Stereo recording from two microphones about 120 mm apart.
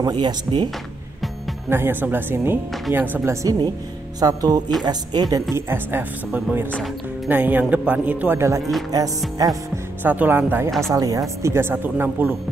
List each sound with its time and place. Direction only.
0.0 s speech: 40° right (ahead or behind)
1.7 s speech: 20° right (ahead or behind)
3.4 s speech: 35° right (ahead or behind)
5.5 s a woman's voice: 20° right (ahead or behind)
10.0 s speech: 15° right (ahead or behind)
10.9 s a woman's voice: 30° right (ahead or behind); by 12.4 s 15° right (ahead or behind)